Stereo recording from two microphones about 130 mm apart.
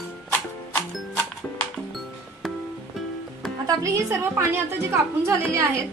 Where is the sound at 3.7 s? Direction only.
25° right (ahead or behind).